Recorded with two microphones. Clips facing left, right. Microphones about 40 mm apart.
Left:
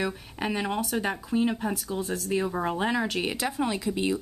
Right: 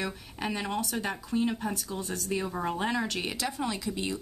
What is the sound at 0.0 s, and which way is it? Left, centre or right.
Speech, centre.